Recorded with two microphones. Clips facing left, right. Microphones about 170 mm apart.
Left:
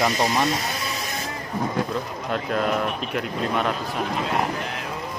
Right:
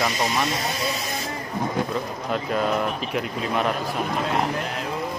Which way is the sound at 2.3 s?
Centre (ahead or behind).